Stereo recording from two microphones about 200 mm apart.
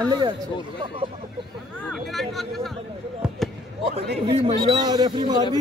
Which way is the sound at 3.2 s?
5° right (ahead or behind).